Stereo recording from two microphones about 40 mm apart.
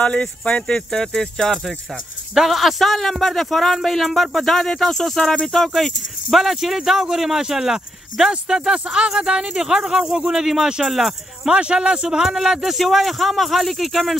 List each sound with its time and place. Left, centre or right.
0.0 s speech: left
0.7 s speech: centre
2.3 s a man's voice: centre
11.5 s speech: right
12.7 s a man's voice: centre